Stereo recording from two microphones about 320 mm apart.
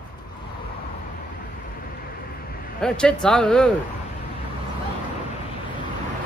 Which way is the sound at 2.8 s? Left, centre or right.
Centre.